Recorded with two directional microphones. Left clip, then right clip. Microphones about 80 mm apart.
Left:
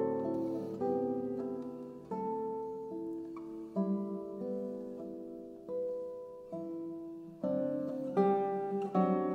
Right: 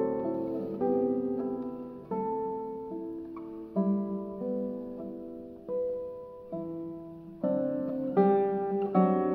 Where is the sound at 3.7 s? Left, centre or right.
Left.